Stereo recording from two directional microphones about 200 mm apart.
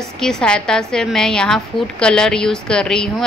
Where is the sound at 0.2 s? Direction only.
5° left (ahead or behind).